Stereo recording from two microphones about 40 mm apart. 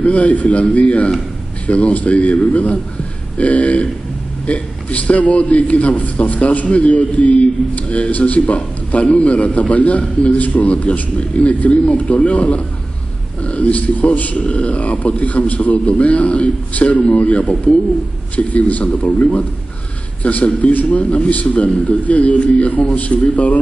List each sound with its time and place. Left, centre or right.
0.0 s speech: left
20.2 s speech: left